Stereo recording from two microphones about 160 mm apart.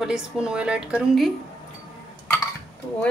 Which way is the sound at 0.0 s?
5° right (ahead or behind).